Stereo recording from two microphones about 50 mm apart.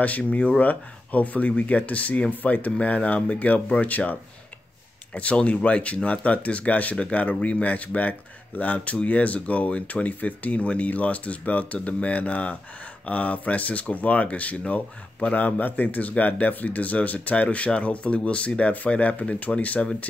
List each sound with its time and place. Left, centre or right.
0.0 s speech: left